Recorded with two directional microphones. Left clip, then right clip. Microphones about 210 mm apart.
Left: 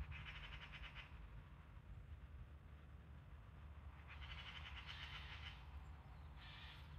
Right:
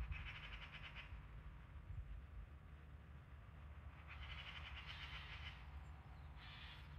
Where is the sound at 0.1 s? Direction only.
50° left (ahead or behind).